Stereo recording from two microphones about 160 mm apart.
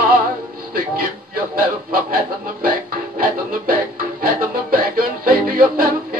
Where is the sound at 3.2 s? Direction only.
65° right (ahead or behind).